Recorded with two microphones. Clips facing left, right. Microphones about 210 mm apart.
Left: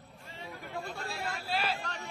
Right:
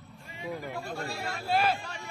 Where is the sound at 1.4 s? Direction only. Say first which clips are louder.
Right 8 dB; 50° right (ahead or behind).